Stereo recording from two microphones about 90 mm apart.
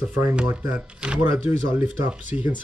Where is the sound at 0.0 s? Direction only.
15° right (ahead or behind).